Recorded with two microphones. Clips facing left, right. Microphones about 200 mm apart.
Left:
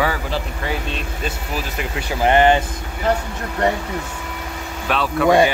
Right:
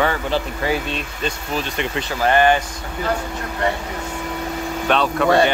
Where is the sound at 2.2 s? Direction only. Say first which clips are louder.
Left 2 dB; 20° left (ahead or behind).